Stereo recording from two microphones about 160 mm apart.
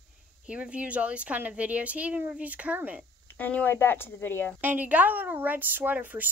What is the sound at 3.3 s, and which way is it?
Speech, 10° left (ahead or behind).